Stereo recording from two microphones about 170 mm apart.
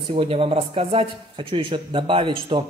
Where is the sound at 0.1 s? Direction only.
30° right (ahead or behind).